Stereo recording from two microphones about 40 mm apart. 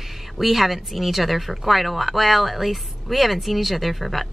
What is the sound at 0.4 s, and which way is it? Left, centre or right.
Speech, centre.